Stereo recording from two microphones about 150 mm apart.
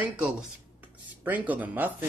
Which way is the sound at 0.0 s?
10° right (ahead or behind).